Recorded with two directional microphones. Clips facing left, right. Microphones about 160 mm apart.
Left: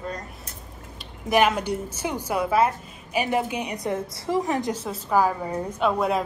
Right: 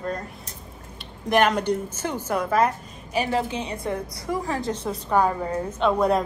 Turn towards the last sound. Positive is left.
turn(degrees=5)  # may be behind; listen again after turning